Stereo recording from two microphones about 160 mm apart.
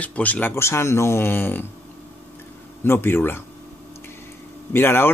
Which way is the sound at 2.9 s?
15° left (ahead or behind).